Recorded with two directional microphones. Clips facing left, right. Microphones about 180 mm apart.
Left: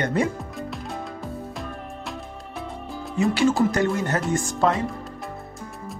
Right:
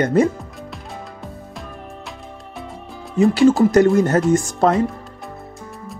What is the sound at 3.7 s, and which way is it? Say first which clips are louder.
Speech: right 9 dB; 45° right (ahead or behind).